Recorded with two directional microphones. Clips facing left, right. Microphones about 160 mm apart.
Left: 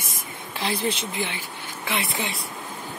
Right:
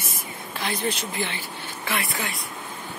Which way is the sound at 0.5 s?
30° left (ahead or behind).